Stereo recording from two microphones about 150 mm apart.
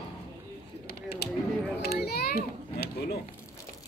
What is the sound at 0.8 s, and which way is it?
Mechanisms, 90° left.